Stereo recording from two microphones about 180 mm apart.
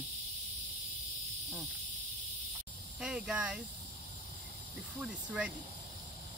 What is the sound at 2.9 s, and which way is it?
Speech, 5° right (ahead or behind).